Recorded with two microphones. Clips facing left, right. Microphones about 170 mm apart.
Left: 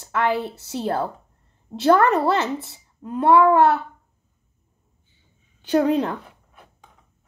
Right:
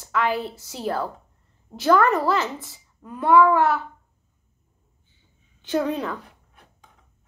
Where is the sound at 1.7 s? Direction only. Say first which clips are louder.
Left 2 dB; 65° left (ahead or behind).